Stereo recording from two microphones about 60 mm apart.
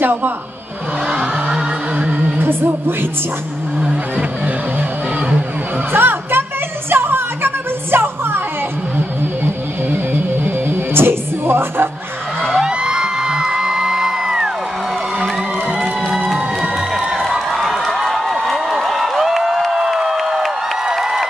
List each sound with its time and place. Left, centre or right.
0.0 s speech: right
2.3 s music: right
5.9 s music: right
11.0 s music: right
12.5 s music: centre
15.8 s music: centre
16.9 s a sound: centre